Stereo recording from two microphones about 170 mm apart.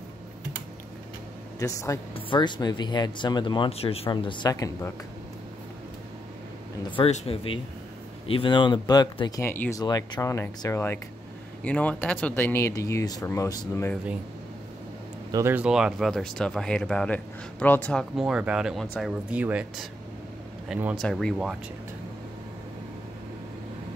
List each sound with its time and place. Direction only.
1.6 s speech: 20° left (ahead or behind)
2.1 s speech: 30° left (ahead or behind)
7.0 s speech: 35° left (ahead or behind); by 13.9 s 20° left (ahead or behind)
15.3 s speech: 10° right (ahead or behind); by 18.0 s 10° left (ahead or behind)
18.1 s speech: 5° right (ahead or behind)